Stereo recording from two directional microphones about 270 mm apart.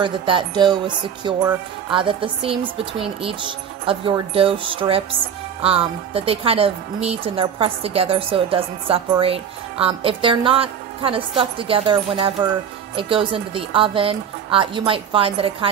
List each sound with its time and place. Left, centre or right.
0.0 s music: centre
1.9 s a woman's voice: centre